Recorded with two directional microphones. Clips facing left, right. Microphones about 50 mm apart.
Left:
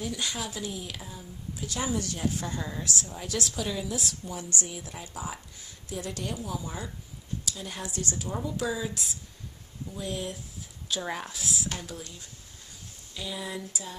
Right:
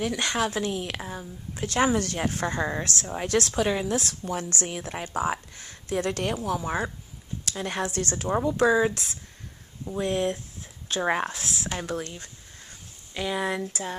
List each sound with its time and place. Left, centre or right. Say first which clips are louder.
0.0 s a woman's voice: right 7 dB; right